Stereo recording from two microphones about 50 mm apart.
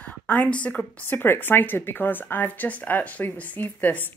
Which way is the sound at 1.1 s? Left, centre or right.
Left.